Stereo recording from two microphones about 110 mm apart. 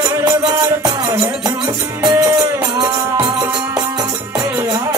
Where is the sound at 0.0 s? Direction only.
35° right (ahead or behind).